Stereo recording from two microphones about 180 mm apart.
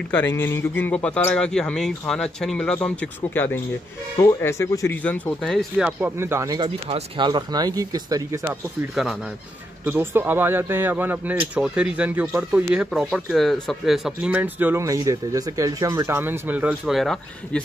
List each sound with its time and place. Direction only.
0.1 s speech: 10° left (ahead or behind); by 8.4 s 20° right (ahead or behind)
8.5 s speech: centre (ahead or behind)